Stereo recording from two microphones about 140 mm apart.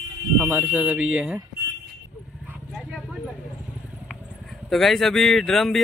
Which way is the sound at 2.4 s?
5° right (ahead or behind).